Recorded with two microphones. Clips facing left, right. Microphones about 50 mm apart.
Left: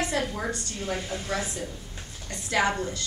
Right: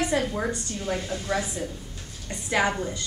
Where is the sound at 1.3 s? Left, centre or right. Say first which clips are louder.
Right 3 dB; centre.